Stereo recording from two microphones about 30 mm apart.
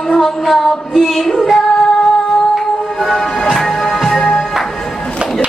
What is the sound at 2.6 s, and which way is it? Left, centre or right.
Music, centre.